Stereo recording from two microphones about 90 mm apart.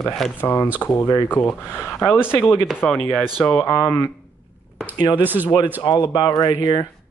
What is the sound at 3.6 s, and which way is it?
Speech, 30° left (ahead or behind).